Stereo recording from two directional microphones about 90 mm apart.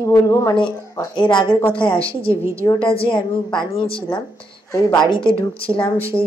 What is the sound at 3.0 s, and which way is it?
Speech, 60° left (ahead or behind).